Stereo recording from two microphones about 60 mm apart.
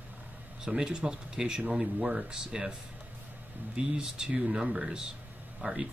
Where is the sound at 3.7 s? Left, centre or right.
Centre.